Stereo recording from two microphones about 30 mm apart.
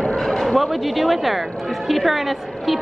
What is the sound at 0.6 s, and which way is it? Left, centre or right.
A woman's voice, centre.